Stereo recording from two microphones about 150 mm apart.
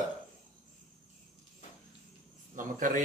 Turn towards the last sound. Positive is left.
turn(degrees=-65)  # may be behind; listen again after turning